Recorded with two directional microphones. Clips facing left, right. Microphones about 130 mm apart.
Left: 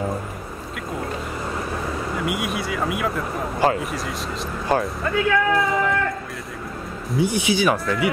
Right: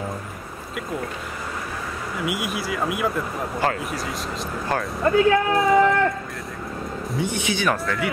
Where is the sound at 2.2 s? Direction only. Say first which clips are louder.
Right 2 dB; centre (ahead or behind).